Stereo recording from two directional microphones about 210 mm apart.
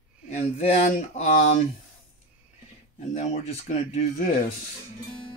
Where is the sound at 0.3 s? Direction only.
35° left (ahead or behind).